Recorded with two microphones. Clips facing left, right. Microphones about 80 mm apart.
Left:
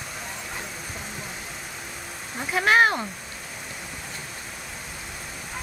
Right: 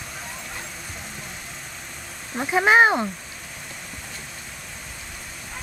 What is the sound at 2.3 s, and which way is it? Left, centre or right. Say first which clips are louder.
Speech: right 3 dB; centre.